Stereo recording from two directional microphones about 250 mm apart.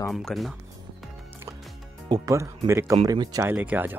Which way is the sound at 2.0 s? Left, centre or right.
Centre.